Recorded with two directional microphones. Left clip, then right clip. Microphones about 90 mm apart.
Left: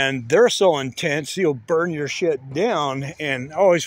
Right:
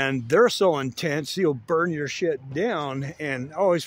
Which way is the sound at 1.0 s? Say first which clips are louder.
Left 3 dB; 15° right (ahead or behind).